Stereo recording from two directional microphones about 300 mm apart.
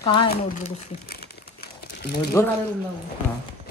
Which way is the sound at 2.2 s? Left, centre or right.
Centre.